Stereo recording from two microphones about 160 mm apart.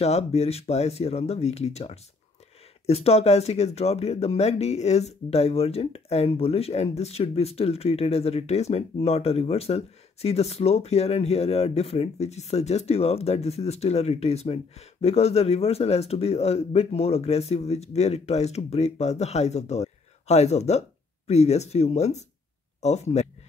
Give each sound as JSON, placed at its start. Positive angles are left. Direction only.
{"t": 0.0, "sound": "speech", "side_deg": 40}